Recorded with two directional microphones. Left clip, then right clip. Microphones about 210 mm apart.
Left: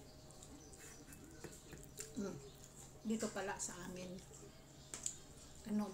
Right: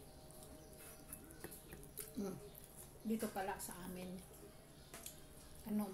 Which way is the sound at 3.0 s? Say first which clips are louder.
Even; centre (ahead or behind).